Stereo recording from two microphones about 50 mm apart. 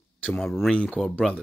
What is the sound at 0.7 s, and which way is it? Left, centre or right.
Speech, left.